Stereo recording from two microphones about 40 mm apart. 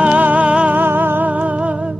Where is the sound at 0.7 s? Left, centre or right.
Right.